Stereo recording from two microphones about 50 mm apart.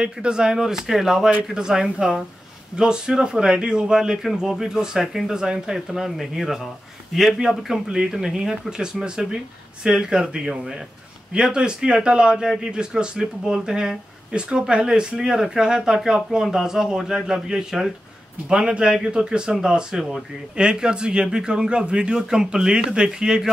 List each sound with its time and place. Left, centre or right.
0.0 s speech: centre
6.0 s a man's voice: centre